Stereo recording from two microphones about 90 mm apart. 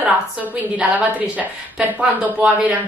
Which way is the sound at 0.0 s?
15° right (ahead or behind).